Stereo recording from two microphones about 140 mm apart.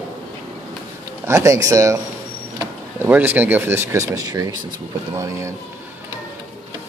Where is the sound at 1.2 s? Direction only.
20° right (ahead or behind).